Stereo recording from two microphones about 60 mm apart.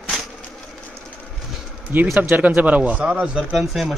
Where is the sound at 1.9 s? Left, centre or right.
Right.